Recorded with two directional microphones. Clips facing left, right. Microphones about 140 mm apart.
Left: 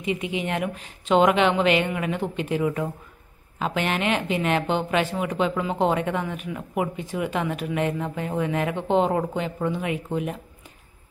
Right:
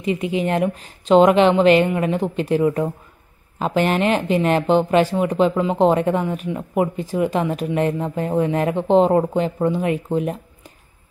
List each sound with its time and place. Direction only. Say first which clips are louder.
0.0 s speech: right 6 dB; 35° right (ahead or behind)